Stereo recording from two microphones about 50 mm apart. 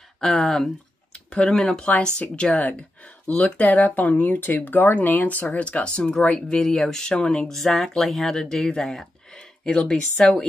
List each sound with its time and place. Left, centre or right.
0.2 s speech: centre
2.1 s speech: left